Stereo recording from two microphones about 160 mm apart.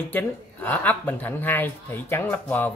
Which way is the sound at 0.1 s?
10° left (ahead or behind).